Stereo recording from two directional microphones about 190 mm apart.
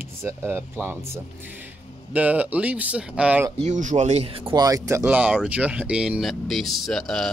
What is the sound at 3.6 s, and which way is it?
Speech, 40° right (ahead or behind).